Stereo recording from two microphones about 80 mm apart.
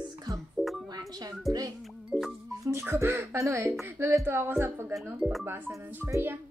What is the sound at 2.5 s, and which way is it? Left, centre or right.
Speech, right.